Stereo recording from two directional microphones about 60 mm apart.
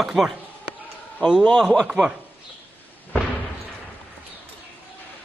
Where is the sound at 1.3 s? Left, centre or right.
Centre.